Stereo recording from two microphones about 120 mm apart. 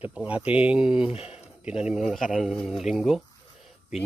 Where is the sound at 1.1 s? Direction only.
55° left (ahead or behind).